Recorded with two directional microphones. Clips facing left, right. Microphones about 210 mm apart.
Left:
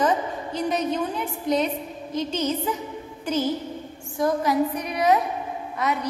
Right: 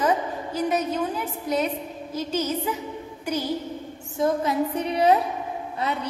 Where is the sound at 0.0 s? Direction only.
5° right (ahead or behind).